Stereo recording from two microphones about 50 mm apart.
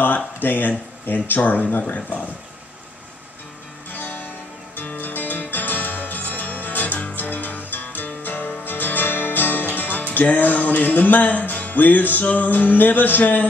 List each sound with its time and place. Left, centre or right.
0.0 s speech: left
3.9 s music: left